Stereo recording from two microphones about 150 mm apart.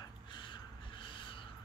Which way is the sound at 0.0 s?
30° left (ahead or behind).